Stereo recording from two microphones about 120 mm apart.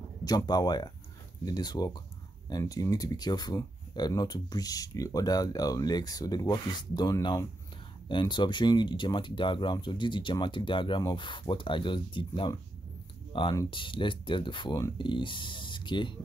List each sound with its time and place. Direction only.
0.5 s speech: 35° left (ahead or behind)